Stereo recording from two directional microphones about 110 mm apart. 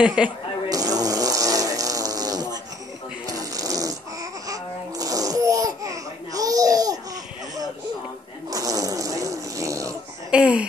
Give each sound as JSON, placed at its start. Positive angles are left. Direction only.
{"t": 0.0, "sound": "a woman's voice", "side_deg": -10}
{"t": 0.7, "sound": "fart", "side_deg": -35}
{"t": 3.3, "sound": "a sound", "side_deg": -35}
{"t": 4.5, "sound": "laughter", "side_deg": -35}
{"t": 8.5, "sound": "snoring", "side_deg": -30}
{"t": 10.3, "sound": "a sound", "side_deg": -10}